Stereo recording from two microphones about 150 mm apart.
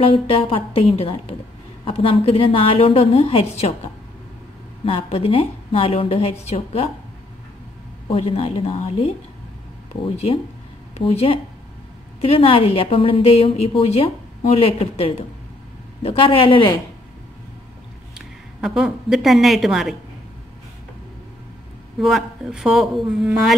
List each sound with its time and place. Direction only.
0.0 s a woman's voice: 40° left (ahead or behind)
4.8 s a woman's voice: 40° left (ahead or behind)
8.1 s a woman's voice: 40° left (ahead or behind)
10.0 s a woman's voice: 40° left (ahead or behind)
18.1 s a woman's voice: centre (ahead or behind)
22.0 s a man's voice: centre (ahead or behind)